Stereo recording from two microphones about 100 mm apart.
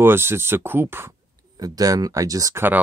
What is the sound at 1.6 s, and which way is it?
Speech, 40° right (ahead or behind).